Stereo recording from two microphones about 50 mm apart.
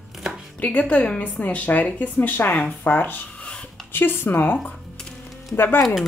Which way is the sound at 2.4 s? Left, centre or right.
Left.